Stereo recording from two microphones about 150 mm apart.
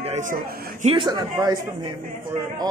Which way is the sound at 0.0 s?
55° right (ahead or behind).